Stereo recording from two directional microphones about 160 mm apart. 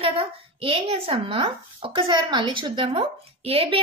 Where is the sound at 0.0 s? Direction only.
35° right (ahead or behind).